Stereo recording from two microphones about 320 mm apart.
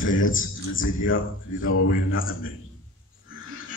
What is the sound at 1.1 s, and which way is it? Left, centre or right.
Speech, left.